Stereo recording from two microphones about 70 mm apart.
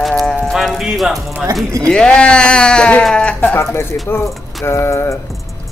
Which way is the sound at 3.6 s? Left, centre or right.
Left.